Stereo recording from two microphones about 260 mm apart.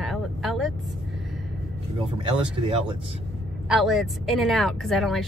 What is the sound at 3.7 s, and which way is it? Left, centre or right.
Speech, centre.